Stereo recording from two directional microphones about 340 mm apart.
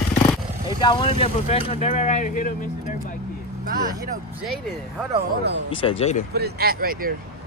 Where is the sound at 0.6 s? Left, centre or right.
Centre.